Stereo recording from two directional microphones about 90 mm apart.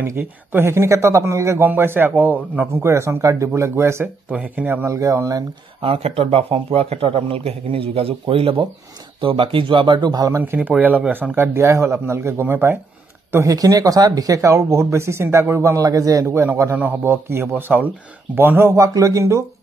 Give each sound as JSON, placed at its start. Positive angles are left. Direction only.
{"t": 0.0, "sound": "a man's voice", "side_deg": -25}
{"t": 4.3, "sound": "speech", "side_deg": -15}
{"t": 4.8, "sound": "speech", "side_deg": -40}
{"t": 5.8, "sound": "speech", "side_deg": -90}
{"t": 9.2, "sound": "speech", "side_deg": -80}
{"t": 10.3, "sound": "a man's voice", "side_deg": -20}
{"t": 13.5, "sound": "speech", "side_deg": -45}
{"t": 16.7, "sound": "a man's voice", "side_deg": -20}